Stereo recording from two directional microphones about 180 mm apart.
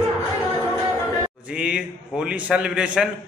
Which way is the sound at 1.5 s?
5° right (ahead or behind).